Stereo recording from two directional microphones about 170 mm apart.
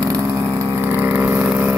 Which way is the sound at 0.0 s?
20° right (ahead or behind).